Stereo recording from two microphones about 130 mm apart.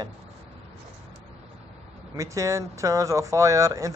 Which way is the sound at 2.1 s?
25° right (ahead or behind).